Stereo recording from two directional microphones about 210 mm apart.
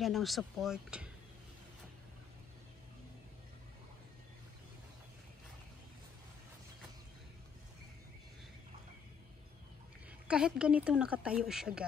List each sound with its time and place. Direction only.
0.0 s speech: centre (ahead or behind)
10.2 s speech: 5° right (ahead or behind)